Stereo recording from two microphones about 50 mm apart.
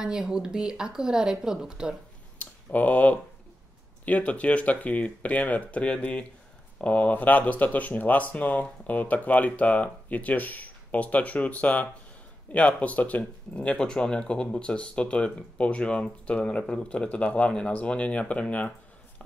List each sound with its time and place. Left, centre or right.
0.0 s a woman's voice: centre
2.3 s a sound: left
4.0 s speech: left
13.7 s speech: centre